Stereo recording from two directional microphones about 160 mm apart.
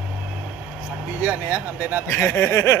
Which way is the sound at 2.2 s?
15° left (ahead or behind).